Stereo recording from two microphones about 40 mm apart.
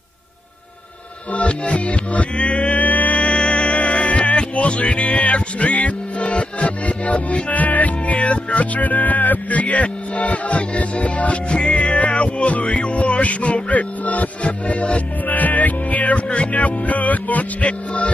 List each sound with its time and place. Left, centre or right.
1.3 s music: left